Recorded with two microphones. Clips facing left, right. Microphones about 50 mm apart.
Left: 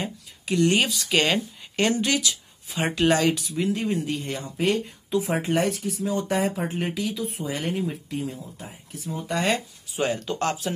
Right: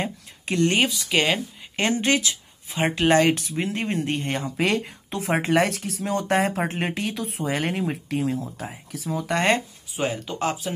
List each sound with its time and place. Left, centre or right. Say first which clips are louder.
0.0 s a sound: right 3 dB; right
0.9 s speech: even; centre
1.8 s speech: right 1 dB; right
8.5 s speech: right 5 dB; right
9.9 s speech: left 1 dB; centre